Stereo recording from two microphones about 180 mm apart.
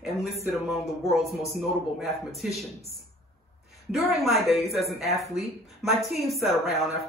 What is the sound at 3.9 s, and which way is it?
Speech, centre (ahead or behind).